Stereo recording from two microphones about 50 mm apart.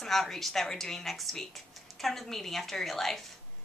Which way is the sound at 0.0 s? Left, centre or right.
Centre.